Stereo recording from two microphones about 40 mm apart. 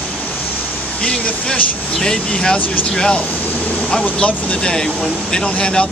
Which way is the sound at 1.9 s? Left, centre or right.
Centre.